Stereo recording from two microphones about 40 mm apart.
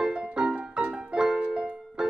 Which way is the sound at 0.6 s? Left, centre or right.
Right.